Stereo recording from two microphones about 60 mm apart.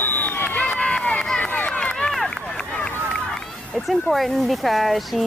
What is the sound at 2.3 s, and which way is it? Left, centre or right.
Run, centre.